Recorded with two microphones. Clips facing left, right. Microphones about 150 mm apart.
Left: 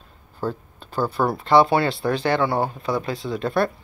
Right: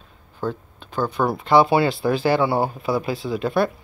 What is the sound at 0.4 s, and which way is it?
Speech, 10° left (ahead or behind).